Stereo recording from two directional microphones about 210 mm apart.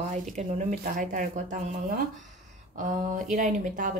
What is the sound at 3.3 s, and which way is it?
Speech, 40° right (ahead or behind).